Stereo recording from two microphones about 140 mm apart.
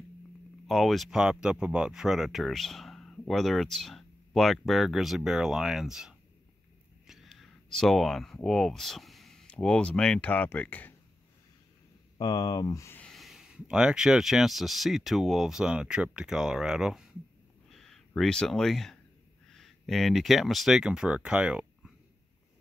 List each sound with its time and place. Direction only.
0.7 s speech: centre (ahead or behind)
12.2 s speech: 25° left (ahead or behind)
13.0 s speech: centre (ahead or behind)
17.6 s a sound: 5° left (ahead or behind)
19.5 s speech: centre (ahead or behind)